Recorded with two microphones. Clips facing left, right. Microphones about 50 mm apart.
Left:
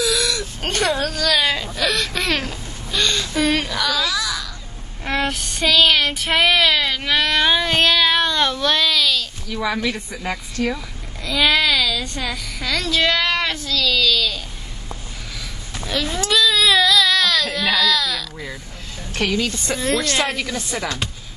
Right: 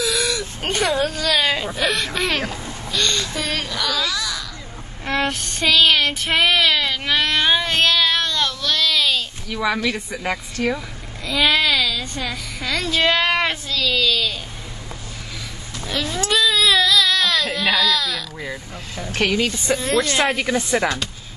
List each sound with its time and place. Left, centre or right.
0.0 s whimper: centre
2.1 s a sound: centre
2.9 s a sound: centre
5.0 s child singing: centre
8.1 s a sound: centre
8.8 s a sound: centre
10.1 s a child's voice: centre
13.2 s speech: right
13.7 s speech: centre
16.0 s a woman's voice: centre
16.3 s baby cry: centre
18.9 s speech: centre
19.7 s a woman's voice: centre
20.0 s speech: centre